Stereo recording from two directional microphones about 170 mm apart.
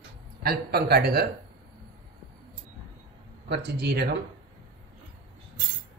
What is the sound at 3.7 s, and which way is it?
Speech, 75° right (ahead or behind).